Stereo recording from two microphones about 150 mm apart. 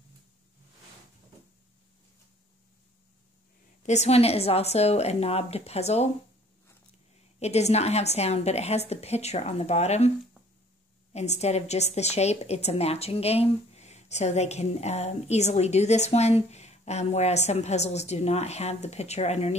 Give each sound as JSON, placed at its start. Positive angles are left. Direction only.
{"t": 3.8, "sound": "a woman's voice", "side_deg": 50}
{"t": 7.3, "sound": "a woman's voice", "side_deg": 45}
{"t": 11.1, "sound": "a woman's voice", "side_deg": 45}